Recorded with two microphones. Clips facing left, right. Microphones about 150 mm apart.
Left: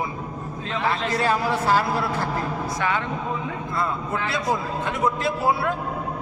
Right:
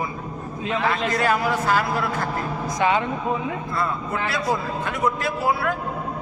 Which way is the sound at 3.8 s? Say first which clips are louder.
Left 1 dB; 25° left (ahead or behind).